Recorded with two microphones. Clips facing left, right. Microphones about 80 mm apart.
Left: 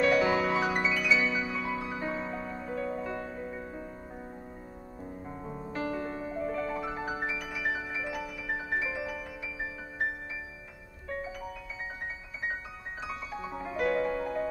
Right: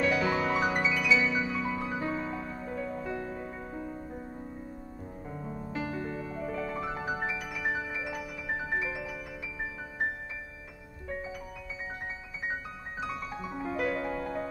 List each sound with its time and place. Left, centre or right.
0.0 s music: centre
5.3 s music: centre
13.7 s music: centre